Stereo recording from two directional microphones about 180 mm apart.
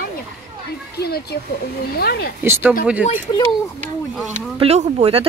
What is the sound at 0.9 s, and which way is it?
Speech, 60° left (ahead or behind).